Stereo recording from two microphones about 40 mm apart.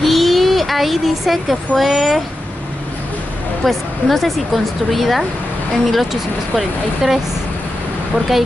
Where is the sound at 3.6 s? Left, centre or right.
Centre.